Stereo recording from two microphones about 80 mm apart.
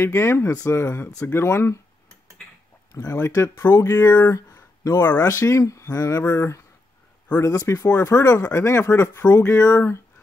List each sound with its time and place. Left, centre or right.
0.0 s speech: left
2.9 s speech: left